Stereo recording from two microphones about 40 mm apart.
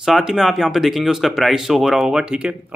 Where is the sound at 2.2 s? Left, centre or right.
Right.